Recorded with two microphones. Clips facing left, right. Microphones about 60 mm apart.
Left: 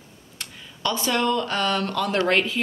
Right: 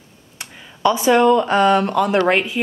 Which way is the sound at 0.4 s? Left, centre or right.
Right.